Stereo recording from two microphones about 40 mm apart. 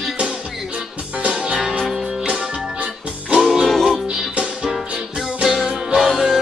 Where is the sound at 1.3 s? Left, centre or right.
Centre.